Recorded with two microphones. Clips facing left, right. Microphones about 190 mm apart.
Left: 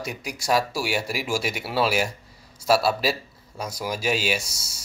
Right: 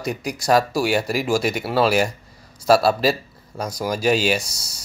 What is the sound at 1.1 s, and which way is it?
Speech, 45° right (ahead or behind).